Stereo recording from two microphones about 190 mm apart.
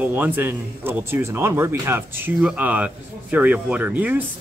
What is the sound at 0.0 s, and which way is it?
Speech, 10° right (ahead or behind).